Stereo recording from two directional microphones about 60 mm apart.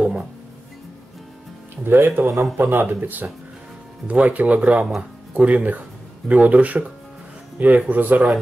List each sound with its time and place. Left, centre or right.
1.9 s speech: right